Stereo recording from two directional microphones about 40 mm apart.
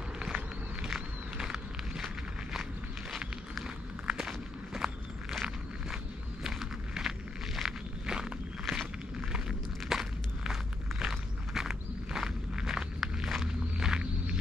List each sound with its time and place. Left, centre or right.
0.8 s a sound: centre
4.1 s walk: centre
4.7 s walk: centre